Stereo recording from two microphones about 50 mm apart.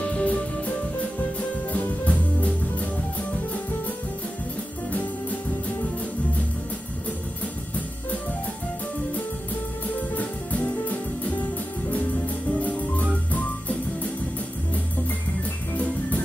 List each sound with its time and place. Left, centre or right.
0.0 s music: left
10.1 s music: left
12.5 s music: left
15.7 s music: left